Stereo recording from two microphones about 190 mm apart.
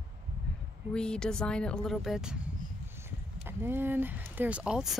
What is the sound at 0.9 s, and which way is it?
Speech, 5° left (ahead or behind).